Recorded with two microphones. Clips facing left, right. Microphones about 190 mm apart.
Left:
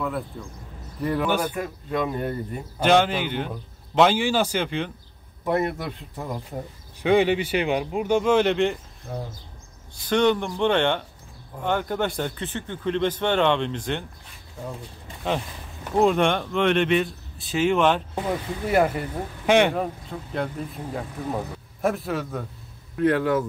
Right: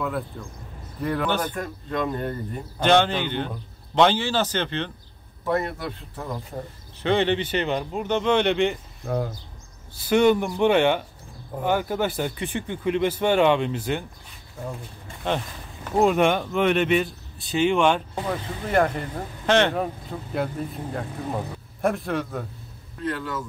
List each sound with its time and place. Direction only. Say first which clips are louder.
0.0 s a man's voice: even; centre (ahead or behind)
9.0 s speech: right 8 dB; 65° right (ahead or behind)
10.0 s speech: right 2 dB; 10° right (ahead or behind)
16.0 s a man's voice: right 1 dB; 5° right (ahead or behind); by 19.7 s 10° left (ahead or behind)
19.7 s speech: even; centre (ahead or behind)
22.9 s speech: left 9 dB; 60° left (ahead or behind)